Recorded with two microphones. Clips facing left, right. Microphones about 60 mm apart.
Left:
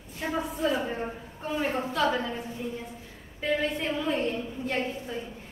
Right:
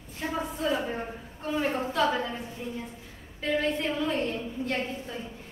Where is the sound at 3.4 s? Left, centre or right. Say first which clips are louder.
Even; centre.